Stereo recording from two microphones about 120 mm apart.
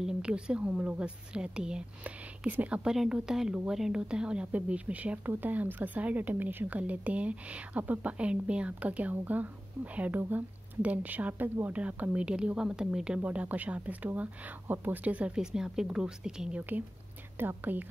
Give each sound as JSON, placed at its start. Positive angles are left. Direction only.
{"t": 0.0, "sound": "a woman's voice", "side_deg": -10}